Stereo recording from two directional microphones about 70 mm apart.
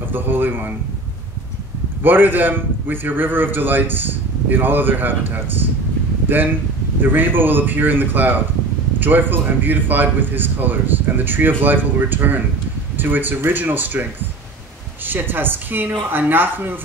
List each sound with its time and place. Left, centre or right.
0.1 s a man's voice: right
2.0 s a man's voice: right
15.0 s a woman's voice: right